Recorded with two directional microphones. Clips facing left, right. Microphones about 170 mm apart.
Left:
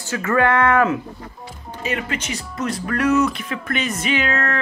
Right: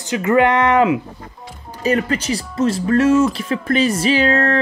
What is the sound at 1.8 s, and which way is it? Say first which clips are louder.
Speech: right 8 dB; 40° right (ahead or behind).